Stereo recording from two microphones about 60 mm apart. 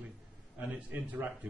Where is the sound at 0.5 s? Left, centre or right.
Right.